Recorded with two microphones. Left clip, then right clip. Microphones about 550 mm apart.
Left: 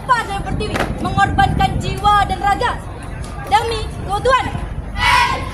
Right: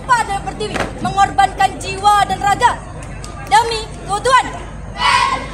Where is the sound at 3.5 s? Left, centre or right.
Centre.